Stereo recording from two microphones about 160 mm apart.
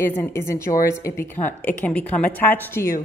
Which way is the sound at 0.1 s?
15° left (ahead or behind).